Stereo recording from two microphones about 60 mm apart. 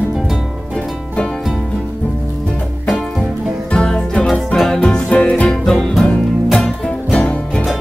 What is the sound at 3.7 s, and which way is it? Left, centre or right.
Music, centre.